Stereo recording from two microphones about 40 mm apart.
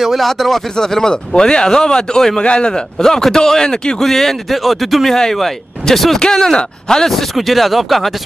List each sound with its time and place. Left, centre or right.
0.0 s speech: centre
0.3 s speech: centre; by 2.8 s left
3.0 s speech: centre
4.0 s speech: centre
7.1 s speech: centre